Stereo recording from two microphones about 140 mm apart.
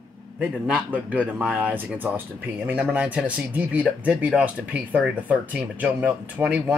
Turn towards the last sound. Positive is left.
turn(degrees=-10)  # may be behind; listen again after turning